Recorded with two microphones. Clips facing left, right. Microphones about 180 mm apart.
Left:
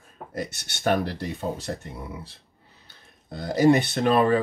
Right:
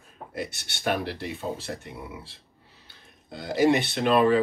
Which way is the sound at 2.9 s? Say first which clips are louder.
Left 2 dB; 45° left (ahead or behind).